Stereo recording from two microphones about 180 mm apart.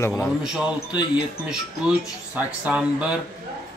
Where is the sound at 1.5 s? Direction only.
5° right (ahead or behind).